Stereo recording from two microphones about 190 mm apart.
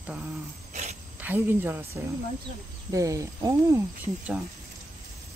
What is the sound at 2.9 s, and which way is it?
Speech, 15° right (ahead or behind).